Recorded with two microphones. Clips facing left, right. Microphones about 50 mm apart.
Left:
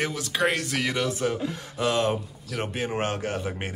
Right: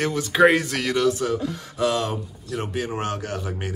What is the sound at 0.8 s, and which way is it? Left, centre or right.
Speech, centre.